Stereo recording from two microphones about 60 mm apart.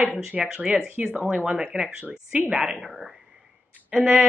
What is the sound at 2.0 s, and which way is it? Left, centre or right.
Speech, right.